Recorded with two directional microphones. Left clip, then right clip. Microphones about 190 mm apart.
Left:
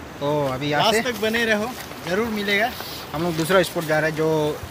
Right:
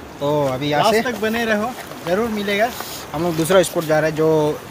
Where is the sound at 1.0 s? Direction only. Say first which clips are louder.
Right 1 dB; 50° right (ahead or behind).